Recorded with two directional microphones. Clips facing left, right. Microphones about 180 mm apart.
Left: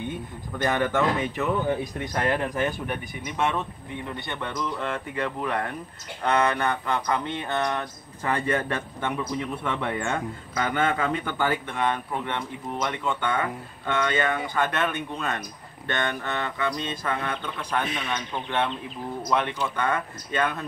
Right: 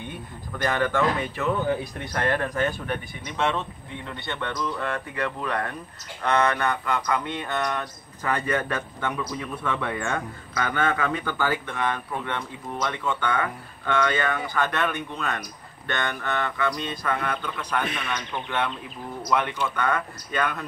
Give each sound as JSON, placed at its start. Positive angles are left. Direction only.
{"t": 0.6, "sound": "a man's voice", "side_deg": 20}